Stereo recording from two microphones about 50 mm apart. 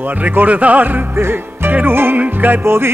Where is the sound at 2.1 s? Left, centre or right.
Right.